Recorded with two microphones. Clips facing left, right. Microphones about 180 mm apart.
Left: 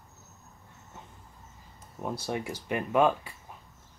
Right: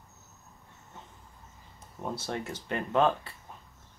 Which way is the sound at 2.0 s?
10° left (ahead or behind).